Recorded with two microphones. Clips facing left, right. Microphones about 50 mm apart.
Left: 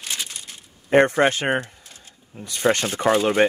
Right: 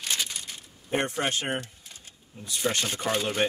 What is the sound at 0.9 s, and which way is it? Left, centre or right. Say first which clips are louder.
Speech: left 11 dB; left.